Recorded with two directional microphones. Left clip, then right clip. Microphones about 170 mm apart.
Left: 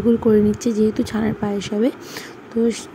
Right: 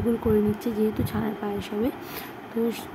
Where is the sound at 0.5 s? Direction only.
40° left (ahead or behind).